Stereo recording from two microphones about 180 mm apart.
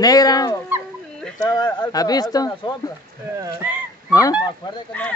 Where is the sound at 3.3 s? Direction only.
15° right (ahead or behind).